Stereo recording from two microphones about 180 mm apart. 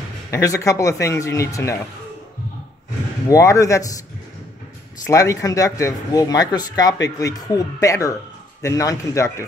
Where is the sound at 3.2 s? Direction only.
15° left (ahead or behind).